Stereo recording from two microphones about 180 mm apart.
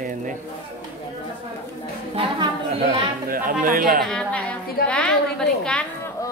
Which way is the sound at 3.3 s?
50° right (ahead or behind).